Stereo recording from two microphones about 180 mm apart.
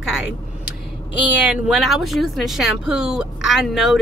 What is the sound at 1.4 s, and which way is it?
Speech, 5° right (ahead or behind).